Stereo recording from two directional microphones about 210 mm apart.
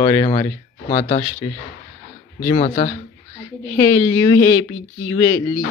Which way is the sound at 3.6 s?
15° left (ahead or behind).